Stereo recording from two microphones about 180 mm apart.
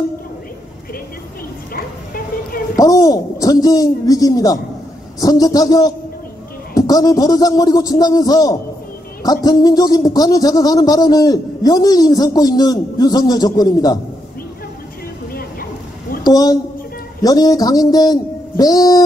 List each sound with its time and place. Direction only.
1.7 s bow-wow: 55° left (ahead or behind)
2.8 s a man's voice: 20° left (ahead or behind)
16.3 s a man's voice: 20° left (ahead or behind)